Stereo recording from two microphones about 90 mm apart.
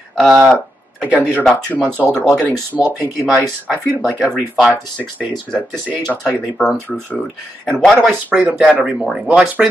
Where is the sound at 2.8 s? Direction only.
20° right (ahead or behind).